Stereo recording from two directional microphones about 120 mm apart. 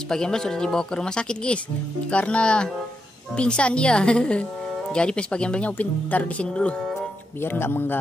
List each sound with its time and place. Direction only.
0.1 s a woman's voice: 5° left (ahead or behind)
6.8 s speech: centre (ahead or behind)
7.4 s speech: 20° left (ahead or behind)